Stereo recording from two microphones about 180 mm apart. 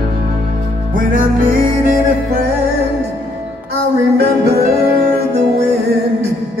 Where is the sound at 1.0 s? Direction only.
50° right (ahead or behind).